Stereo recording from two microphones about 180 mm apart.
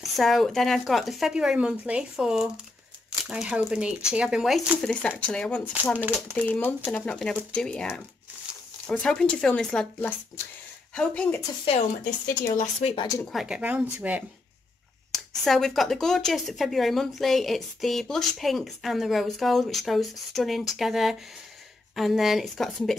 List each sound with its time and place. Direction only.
0.0 s speech: centre (ahead or behind)
5.9 s speech: 10° right (ahead or behind)
6.3 s speech: 5° left (ahead or behind)
11.7 s speech: 30° left (ahead or behind)
13.3 s speech: 5° right (ahead or behind)
15.1 s speech: centre (ahead or behind)